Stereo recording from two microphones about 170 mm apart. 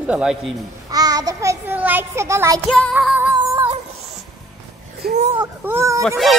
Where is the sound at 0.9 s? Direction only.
20° right (ahead or behind).